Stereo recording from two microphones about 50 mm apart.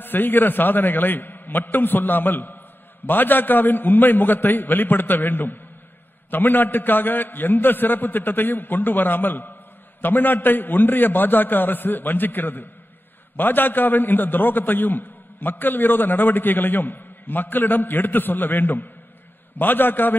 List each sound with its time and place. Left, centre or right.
0.0 s a man's voice: left